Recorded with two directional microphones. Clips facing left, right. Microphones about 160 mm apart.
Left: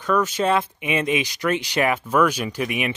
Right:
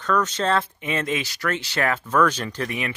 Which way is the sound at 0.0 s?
10° left (ahead or behind).